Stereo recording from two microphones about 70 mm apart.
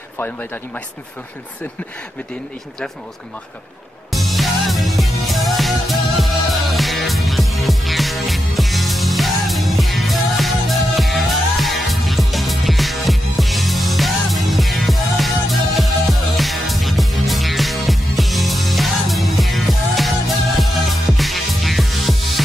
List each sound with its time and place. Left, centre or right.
0.2 s speech: left
4.1 s music: centre